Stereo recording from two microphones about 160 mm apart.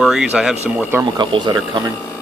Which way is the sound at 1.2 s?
30° right (ahead or behind).